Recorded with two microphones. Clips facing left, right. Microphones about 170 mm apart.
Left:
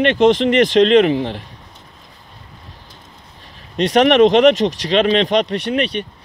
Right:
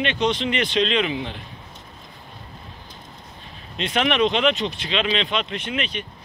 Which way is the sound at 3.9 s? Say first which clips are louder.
Left 10 dB; 45° left (ahead or behind).